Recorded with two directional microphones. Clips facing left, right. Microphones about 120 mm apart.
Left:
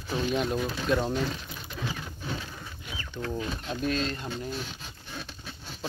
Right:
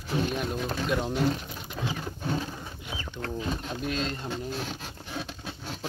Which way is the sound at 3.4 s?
20° right (ahead or behind).